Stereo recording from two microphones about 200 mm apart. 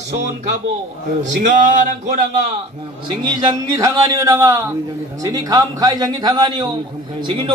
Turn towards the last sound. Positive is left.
turn(degrees=-20)  # may be behind; listen again after turning